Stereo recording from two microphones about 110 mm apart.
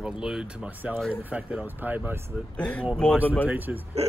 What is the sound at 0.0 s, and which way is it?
Speech, 5° right (ahead or behind).